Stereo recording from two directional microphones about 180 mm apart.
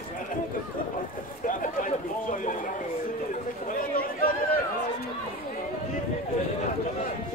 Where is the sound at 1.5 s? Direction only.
45° left (ahead or behind).